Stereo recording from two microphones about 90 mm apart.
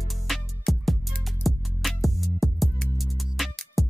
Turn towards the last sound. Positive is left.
turn(degrees=0)  # may be behind; listen again after turning